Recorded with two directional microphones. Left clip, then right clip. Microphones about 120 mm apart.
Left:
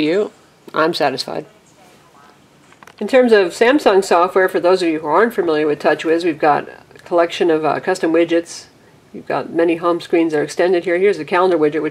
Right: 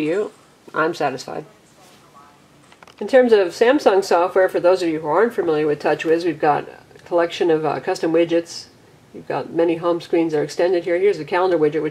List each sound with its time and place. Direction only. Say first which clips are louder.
0.0 s speech: left 4 dB; 35° left (ahead or behind)
3.0 s speech: left 2 dB; 25° left (ahead or behind)